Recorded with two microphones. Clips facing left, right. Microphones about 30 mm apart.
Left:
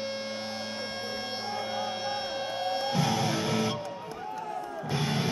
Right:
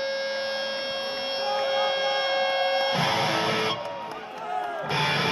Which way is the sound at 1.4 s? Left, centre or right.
Right.